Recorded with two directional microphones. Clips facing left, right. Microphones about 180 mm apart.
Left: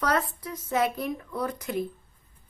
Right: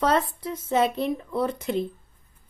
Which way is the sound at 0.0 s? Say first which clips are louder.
Right 4 dB; 25° right (ahead or behind).